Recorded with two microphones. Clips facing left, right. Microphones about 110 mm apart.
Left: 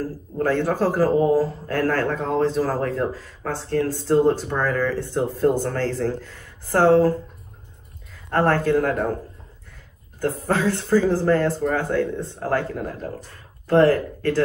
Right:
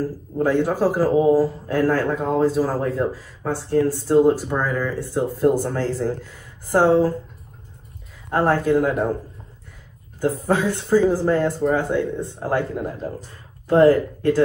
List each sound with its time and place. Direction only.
0.4 s a man's voice: 15° right (ahead or behind)
8.3 s a man's voice: 15° right (ahead or behind)
10.2 s a man's voice: 15° right (ahead or behind)